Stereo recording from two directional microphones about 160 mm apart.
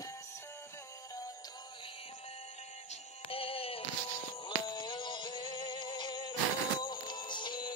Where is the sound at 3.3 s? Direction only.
35° left (ahead or behind).